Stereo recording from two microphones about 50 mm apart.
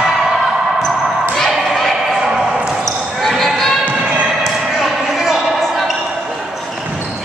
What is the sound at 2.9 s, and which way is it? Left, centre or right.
Basketball bounce, centre.